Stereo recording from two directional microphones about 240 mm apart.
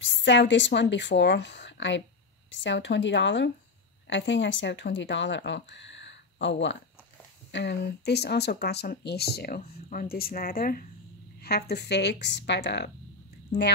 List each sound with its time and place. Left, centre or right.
0.0 s speech: left